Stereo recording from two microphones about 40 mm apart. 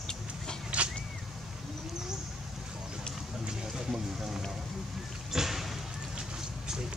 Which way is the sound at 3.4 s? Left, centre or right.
Centre.